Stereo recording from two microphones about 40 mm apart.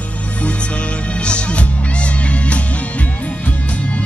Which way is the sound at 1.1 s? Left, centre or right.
Left.